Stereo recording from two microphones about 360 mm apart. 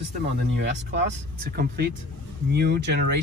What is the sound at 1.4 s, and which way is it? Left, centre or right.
Speech, right.